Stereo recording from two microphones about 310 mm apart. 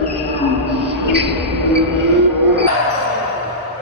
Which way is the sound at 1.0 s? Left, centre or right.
Right.